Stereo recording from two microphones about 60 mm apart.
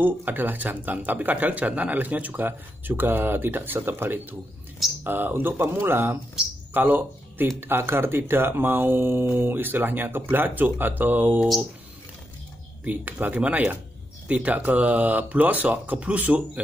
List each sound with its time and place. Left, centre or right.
0.0 s speech: right
12.8 s speech: right